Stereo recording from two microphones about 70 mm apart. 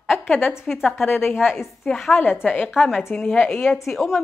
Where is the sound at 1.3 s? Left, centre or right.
Centre.